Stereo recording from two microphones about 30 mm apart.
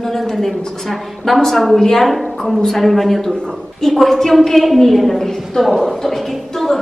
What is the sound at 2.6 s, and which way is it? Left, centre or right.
A woman's voice, centre.